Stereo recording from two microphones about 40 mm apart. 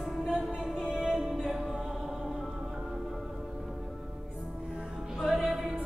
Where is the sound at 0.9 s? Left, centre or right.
Centre.